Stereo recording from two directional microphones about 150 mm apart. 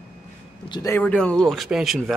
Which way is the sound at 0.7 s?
30° left (ahead or behind).